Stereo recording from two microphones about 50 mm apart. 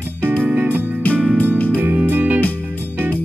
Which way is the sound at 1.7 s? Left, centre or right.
Right.